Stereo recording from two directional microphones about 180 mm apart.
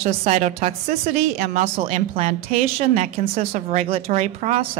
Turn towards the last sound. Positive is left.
turn(degrees=-40)  # may be behind; listen again after turning